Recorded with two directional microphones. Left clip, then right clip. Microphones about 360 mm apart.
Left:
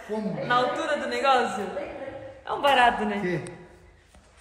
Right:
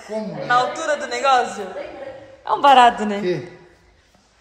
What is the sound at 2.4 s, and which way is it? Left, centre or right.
Speech, centre.